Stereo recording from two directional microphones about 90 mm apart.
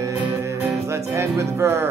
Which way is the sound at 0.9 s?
30° right (ahead or behind).